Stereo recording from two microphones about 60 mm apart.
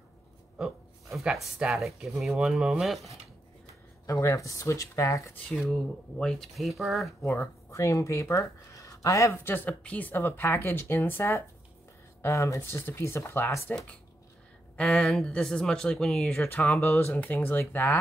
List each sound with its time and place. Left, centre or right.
1.2 s speech: centre
4.0 s speech: left
5.7 s speech: centre
7.7 s speech: left
9.3 s speech: left
12.2 s speech: left
12.8 s speech: left
14.8 s speech: centre
16.3 s speech: left
16.8 s speech: left
17.1 s speech: left